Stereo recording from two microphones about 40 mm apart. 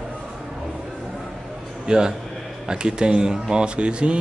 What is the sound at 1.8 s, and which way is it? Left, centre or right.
A man's voice, centre.